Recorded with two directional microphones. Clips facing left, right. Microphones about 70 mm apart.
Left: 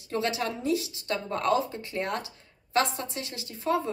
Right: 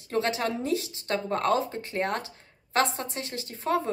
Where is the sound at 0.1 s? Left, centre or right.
Right.